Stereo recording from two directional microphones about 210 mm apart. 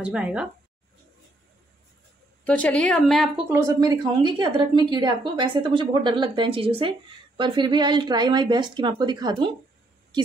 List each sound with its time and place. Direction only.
0.0 s a woman's voice: 5° right (ahead or behind)
2.4 s a woman's voice: 5° left (ahead or behind)
3.6 s a woman's voice: 15° right (ahead or behind)